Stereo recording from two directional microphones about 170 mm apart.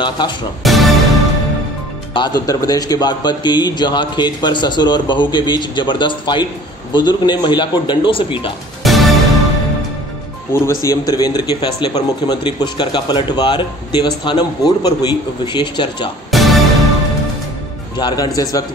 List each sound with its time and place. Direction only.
0.7 s music: centre (ahead or behind)
2.1 s a man's voice: 25° left (ahead or behind)
8.8 s music: centre (ahead or behind)
10.8 s a man's voice: 20° left (ahead or behind)
16.3 s music: centre (ahead or behind)
17.9 s a man's voice: 25° left (ahead or behind)